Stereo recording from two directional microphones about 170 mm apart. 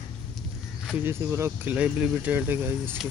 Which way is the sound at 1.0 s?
15° right (ahead or behind).